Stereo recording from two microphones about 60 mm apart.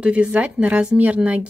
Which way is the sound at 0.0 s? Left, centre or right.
Right.